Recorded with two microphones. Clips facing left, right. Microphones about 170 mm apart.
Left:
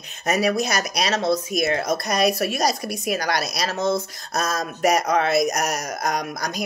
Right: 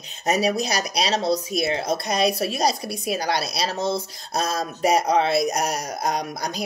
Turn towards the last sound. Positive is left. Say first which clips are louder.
# left 1 dB
turn(degrees=-30)  # may be behind; listen again after turning